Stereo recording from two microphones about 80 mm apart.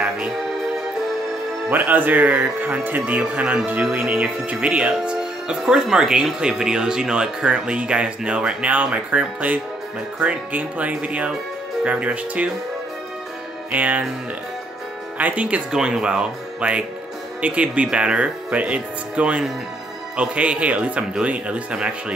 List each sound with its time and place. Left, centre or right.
1.7 s speech: right
13.7 s speech: centre
15.1 s speech: centre